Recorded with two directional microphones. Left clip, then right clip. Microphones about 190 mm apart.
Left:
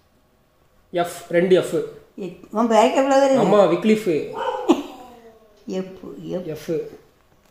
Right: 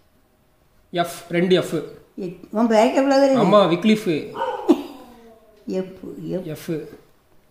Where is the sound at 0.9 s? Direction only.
45° right (ahead or behind).